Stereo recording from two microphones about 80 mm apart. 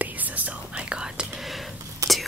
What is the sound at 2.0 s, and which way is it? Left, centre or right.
Whispering, right.